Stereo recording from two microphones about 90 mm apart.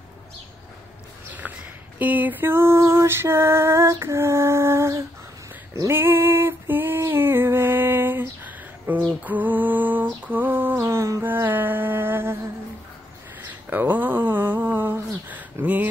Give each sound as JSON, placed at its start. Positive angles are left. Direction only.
{"t": 2.0, "sound": "female singing", "side_deg": -20}
{"t": 9.2, "sound": "lullaby", "side_deg": -20}
{"t": 13.4, "sound": "a sound", "side_deg": -20}